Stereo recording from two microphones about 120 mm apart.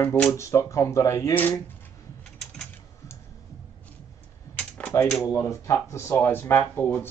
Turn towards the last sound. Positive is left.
turn(degrees=15)  # may be behind; listen again after turning